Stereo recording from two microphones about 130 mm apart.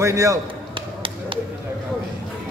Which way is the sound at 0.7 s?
40° right (ahead or behind).